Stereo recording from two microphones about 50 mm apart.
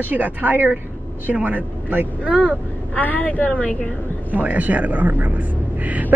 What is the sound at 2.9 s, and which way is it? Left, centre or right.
Speech, left.